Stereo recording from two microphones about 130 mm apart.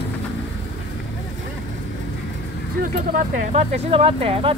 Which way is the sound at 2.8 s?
90° right.